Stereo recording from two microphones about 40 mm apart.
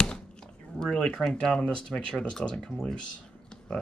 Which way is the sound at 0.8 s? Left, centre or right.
Centre.